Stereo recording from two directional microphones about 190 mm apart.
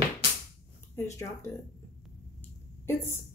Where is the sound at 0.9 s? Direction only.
15° left (ahead or behind).